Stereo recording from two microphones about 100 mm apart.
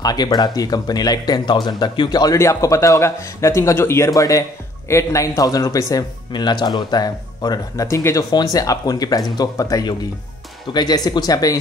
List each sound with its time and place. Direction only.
0.0 s speech: 40° left (ahead or behind)
6.3 s speech: 45° left (ahead or behind)